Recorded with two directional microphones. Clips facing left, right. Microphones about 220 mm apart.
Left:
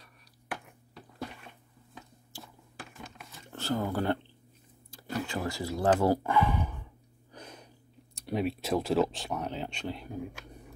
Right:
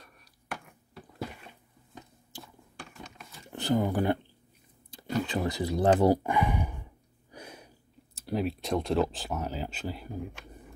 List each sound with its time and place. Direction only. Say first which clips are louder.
2.4 s a sound: even; 5° left (ahead or behind)
3.4 s speech: right 4 dB; 15° right (ahead or behind)
5.2 s speech: right 3 dB; 20° right (ahead or behind); by 10.2 s 5° right (ahead or behind)